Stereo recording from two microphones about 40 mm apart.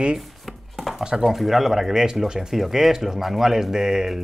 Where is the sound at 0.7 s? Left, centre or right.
Centre.